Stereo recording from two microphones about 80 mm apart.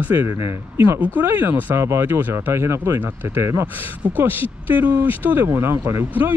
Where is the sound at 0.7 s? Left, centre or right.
Right.